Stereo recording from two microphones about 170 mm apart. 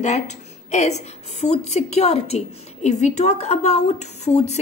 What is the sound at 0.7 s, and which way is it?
Speech, 40° left (ahead or behind).